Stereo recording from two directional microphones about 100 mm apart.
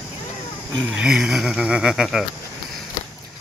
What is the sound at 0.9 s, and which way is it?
Speech, 5° right (ahead or behind).